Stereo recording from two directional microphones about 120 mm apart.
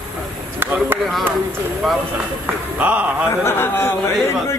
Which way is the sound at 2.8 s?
10° right (ahead or behind).